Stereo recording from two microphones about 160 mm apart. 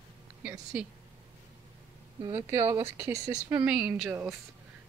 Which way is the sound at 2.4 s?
15° right (ahead or behind).